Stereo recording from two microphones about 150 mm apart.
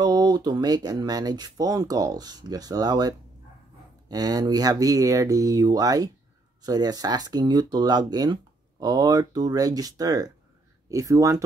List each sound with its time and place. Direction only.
0.0 s speech: 30° right (ahead or behind)